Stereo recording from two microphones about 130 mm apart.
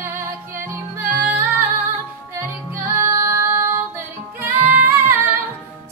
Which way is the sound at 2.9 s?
25° right (ahead or behind).